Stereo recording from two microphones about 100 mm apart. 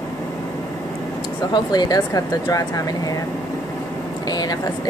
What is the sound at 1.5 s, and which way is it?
Speech, 45° left (ahead or behind).